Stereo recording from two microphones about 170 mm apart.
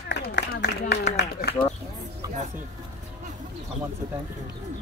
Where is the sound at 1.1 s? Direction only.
70° left (ahead or behind).